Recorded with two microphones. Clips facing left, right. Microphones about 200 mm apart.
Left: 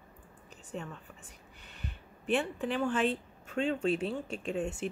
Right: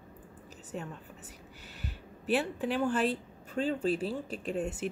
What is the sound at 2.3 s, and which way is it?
Speech, 5° right (ahead or behind).